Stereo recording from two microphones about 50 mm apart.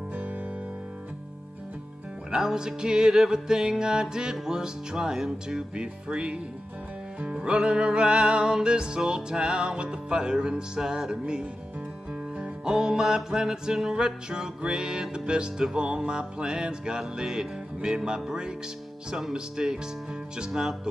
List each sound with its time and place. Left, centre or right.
0.1 s music: right
2.3 s music: centre
7.4 s music: right